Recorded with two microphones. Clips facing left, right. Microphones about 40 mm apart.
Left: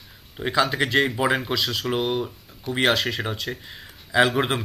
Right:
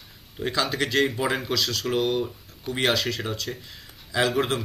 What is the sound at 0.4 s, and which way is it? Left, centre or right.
Speech, centre.